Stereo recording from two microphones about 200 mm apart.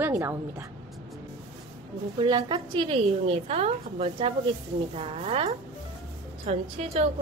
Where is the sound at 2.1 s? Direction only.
25° right (ahead or behind).